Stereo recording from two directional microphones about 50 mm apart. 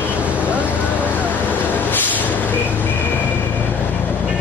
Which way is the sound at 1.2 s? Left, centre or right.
Left.